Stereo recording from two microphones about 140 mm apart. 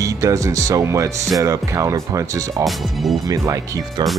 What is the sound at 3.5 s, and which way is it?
Speech, 25° right (ahead or behind).